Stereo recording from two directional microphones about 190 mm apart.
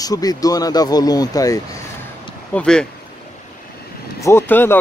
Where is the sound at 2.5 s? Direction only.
5° left (ahead or behind).